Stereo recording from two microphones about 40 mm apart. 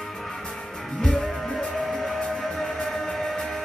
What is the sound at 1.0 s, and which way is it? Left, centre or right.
Music, centre.